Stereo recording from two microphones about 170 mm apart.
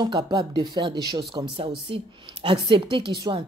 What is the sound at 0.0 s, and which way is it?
A woman's voice, 25° right (ahead or behind).